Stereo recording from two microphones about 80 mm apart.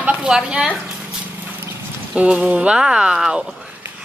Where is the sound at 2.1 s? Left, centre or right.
Centre.